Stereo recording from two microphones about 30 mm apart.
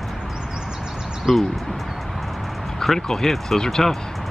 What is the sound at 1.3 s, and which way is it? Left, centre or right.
Speech, centre.